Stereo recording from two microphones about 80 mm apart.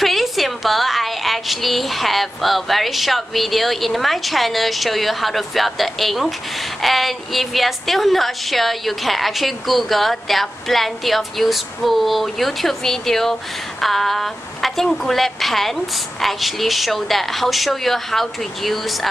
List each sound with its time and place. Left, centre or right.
0.0 s a woman's voice: centre